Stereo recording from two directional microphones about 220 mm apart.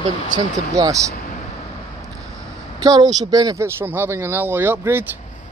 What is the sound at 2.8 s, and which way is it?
Speech, 20° right (ahead or behind).